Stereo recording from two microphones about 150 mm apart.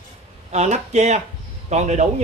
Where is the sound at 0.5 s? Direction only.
50° right (ahead or behind).